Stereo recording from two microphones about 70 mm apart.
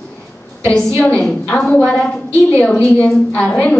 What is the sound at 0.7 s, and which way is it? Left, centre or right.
A woman's voice, centre.